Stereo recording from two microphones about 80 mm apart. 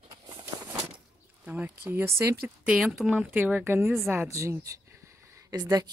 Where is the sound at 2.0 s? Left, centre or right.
Right.